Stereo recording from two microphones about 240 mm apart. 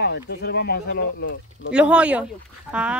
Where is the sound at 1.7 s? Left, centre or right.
Centre.